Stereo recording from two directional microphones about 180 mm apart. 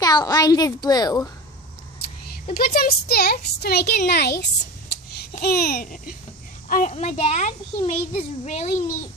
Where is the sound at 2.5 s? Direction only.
55° left (ahead or behind).